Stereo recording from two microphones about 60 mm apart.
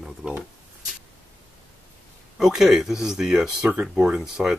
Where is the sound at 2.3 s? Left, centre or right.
Centre.